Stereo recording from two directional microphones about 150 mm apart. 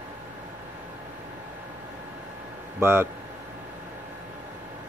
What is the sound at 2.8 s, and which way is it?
Speech, 15° right (ahead or behind).